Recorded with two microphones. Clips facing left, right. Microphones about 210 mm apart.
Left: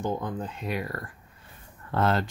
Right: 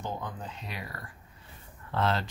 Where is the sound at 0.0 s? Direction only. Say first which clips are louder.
Left 7 dB; 50° left (ahead or behind).